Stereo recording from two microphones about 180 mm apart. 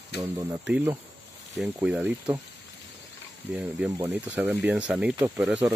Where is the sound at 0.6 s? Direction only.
5° right (ahead or behind).